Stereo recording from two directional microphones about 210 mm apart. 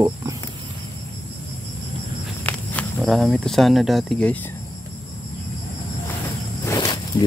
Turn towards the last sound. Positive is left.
turn(degrees=20)  # may be behind; listen again after turning